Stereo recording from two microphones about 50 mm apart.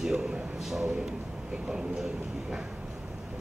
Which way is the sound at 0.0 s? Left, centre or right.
Centre.